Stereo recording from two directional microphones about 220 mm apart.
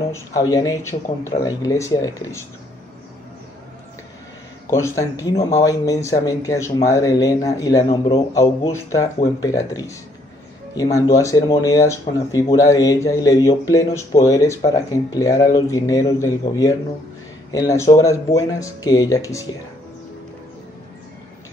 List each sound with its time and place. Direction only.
0.1 s speech: 15° left (ahead or behind)
4.6 s speech: 10° left (ahead or behind)